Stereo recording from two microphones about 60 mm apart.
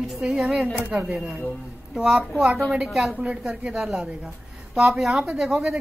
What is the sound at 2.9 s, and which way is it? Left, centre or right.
Speech, centre.